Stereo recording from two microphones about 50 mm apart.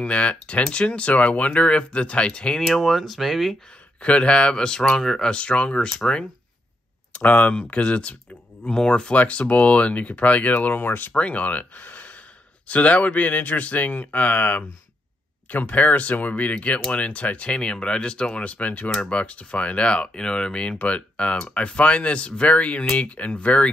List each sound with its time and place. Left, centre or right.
0.0 s speech: left
2.6 s speech: centre
4.0 s speech: left
7.1 s speech: left
11.1 s speech: left